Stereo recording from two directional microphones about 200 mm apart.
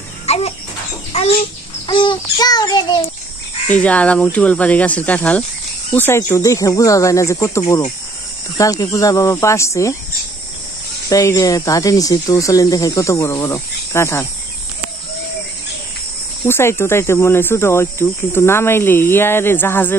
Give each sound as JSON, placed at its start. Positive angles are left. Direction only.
{"t": 0.3, "sound": "a child's voice", "side_deg": 30}
{"t": 1.1, "sound": "bird", "side_deg": 30}
{"t": 1.9, "sound": "child singing", "side_deg": 25}
{"t": 3.6, "sound": "speech", "side_deg": 5}
{"t": 11.1, "sound": "speech", "side_deg": 15}
{"t": 16.4, "sound": "speech", "side_deg": 10}